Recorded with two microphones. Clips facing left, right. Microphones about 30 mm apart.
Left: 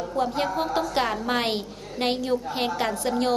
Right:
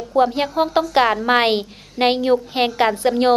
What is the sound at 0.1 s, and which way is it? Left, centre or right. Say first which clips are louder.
A woman's voice: right 9 dB; right.